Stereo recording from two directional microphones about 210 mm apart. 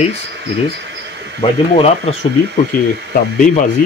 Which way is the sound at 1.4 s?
30° left (ahead or behind).